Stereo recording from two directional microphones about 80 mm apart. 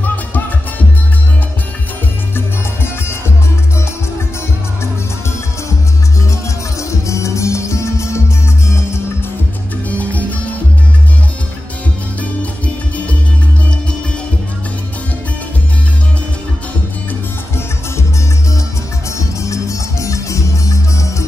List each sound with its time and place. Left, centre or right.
0.0 s music: left
2.3 s music: left
6.3 s music: left
9.8 s music: centre
12.2 s music: centre
19.0 s music: left